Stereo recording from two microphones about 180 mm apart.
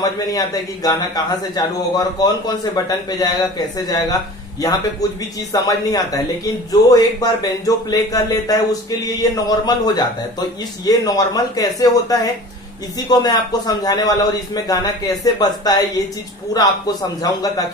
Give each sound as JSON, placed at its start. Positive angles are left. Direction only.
{"t": 0.0, "sound": "a man's voice", "side_deg": 20}
{"t": 5.5, "sound": "a man's voice", "side_deg": 20}